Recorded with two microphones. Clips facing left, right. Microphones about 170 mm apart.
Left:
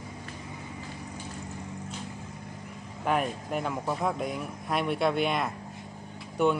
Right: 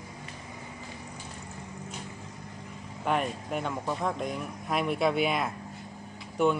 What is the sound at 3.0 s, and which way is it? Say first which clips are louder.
Speech: left 1 dB; centre (ahead or behind).